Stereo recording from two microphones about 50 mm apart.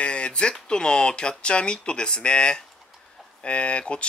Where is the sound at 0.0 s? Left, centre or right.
Left.